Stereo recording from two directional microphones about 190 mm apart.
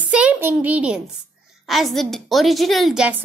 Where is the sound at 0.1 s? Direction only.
5° right (ahead or behind).